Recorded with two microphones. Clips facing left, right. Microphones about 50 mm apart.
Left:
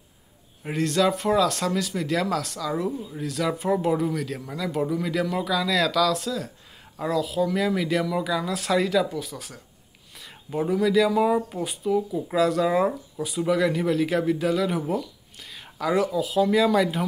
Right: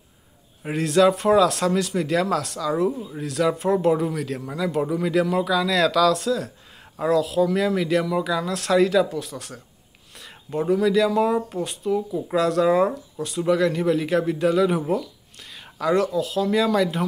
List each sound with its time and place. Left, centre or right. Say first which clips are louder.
0.7 s speech: right 4 dB; centre